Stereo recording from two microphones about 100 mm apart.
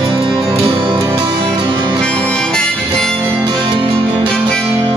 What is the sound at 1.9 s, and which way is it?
Music, 10° left (ahead or behind).